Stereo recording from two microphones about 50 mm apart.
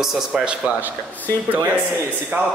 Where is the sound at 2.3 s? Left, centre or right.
Right.